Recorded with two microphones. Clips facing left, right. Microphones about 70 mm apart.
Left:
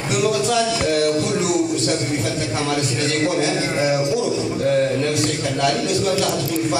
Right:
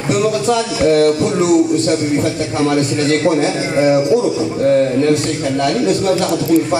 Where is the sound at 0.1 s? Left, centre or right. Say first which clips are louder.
Right 4 dB; right.